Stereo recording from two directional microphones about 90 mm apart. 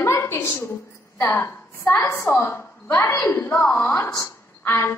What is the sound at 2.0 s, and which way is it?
Speech, 30° left (ahead or behind).